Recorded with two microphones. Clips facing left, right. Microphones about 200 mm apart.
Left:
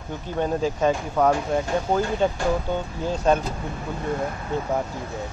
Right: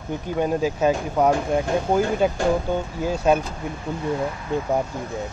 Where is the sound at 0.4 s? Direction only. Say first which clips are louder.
Right 1 dB; 10° right (ahead or behind).